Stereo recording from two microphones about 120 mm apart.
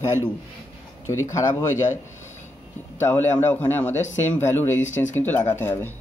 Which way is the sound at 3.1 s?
15° left (ahead or behind).